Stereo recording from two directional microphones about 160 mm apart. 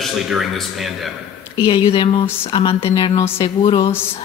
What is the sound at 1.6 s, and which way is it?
Speech, 35° left (ahead or behind).